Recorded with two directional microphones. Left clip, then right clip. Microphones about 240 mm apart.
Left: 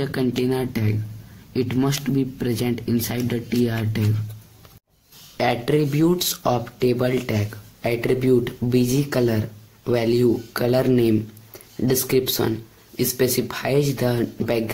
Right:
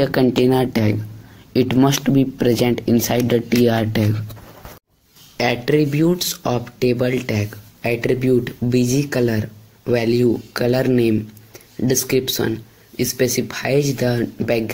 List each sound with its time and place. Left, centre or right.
0.0 s speech: centre
5.4 s speech: centre